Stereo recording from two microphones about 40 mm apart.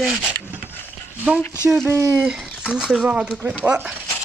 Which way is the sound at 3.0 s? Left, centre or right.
Right.